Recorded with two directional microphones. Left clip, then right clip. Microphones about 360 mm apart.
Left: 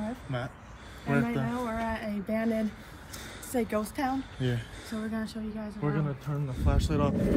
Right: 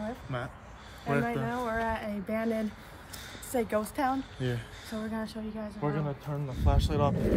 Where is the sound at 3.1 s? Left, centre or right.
Centre.